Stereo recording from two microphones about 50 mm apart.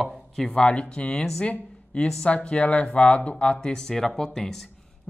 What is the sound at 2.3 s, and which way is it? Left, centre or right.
A man's voice, left.